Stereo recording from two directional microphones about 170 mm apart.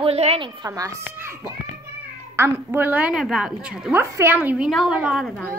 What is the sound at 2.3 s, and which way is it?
A woman's voice, 15° right (ahead or behind).